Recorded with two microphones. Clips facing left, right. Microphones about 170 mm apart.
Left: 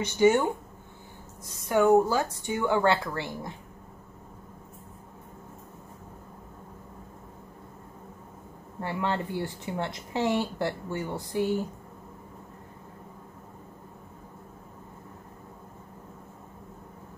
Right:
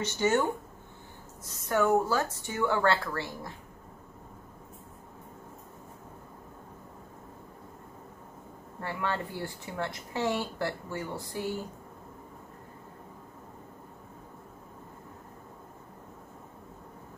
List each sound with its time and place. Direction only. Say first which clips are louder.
0.0 s speech: left 5 dB; 15° left (ahead or behind)
8.8 s a woman's voice: left 3 dB; 20° left (ahead or behind)